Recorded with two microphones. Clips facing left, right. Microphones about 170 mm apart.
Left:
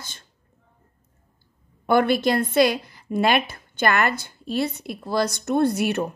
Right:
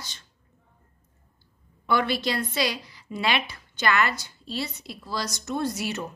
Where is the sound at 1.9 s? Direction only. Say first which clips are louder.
Left 6 dB; 50° left (ahead or behind).